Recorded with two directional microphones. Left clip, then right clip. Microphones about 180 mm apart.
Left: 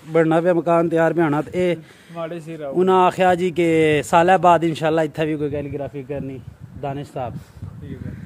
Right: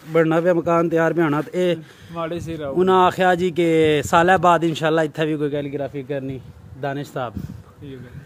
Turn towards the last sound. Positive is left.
turn(degrees=-10)  # may be behind; listen again after turning